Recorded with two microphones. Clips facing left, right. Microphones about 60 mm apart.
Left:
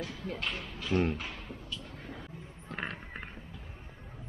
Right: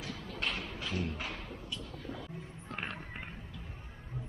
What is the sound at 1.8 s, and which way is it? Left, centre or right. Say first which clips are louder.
Vehicle: right 1 dB; left.